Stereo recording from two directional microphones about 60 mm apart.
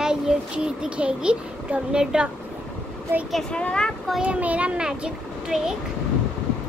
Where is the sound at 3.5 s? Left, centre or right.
Centre.